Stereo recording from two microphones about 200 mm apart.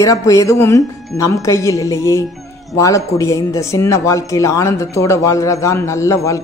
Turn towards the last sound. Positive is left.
turn(degrees=15)  # may be behind; listen again after turning